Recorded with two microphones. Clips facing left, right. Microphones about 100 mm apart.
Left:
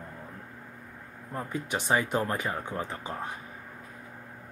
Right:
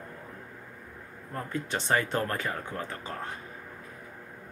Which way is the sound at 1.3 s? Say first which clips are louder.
Even; 15° left (ahead or behind).